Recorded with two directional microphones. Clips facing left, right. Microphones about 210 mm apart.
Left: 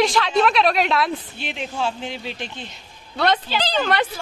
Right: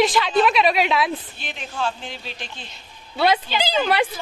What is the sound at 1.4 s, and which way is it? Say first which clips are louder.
Speech: left 2 dB; 20° left (ahead or behind).